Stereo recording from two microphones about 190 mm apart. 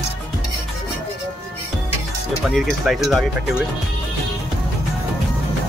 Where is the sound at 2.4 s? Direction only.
Centre (ahead or behind).